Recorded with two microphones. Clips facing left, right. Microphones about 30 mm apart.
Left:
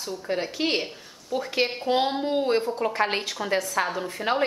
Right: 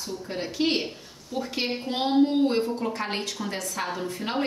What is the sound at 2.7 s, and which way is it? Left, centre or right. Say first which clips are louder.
A woman's voice: left 4 dB; left.